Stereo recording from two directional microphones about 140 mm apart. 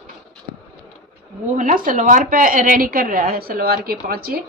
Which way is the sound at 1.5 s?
75° right (ahead or behind).